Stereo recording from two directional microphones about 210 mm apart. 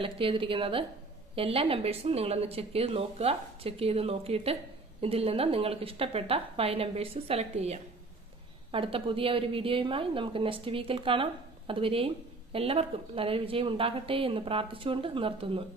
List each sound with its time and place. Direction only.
0.0 s a woman's voice: 25° right (ahead or behind)